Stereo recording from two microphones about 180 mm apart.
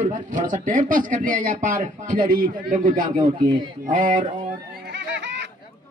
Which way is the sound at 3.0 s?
35° right (ahead or behind).